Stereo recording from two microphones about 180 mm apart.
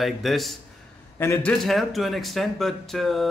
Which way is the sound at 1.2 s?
15° left (ahead or behind).